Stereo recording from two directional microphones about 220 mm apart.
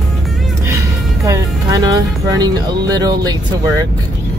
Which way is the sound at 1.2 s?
15° right (ahead or behind).